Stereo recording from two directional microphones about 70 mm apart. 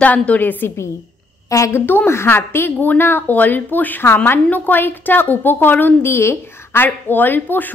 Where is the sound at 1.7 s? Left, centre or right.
Left.